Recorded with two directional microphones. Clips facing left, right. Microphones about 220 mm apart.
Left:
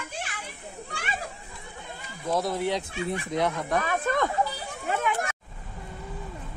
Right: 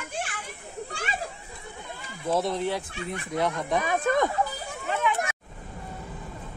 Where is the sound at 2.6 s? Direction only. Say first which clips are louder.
Left 2 dB; 15° left (ahead or behind).